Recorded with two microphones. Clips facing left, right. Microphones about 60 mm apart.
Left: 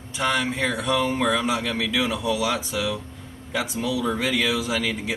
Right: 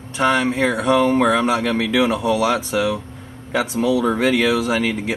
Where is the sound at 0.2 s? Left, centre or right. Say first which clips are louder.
Right 6 dB; right.